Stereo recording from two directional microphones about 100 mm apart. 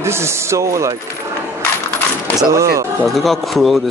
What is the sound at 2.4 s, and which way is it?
Speech, 35° right (ahead or behind).